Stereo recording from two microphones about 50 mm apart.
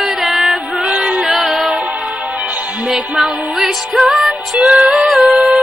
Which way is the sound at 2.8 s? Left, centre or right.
Centre.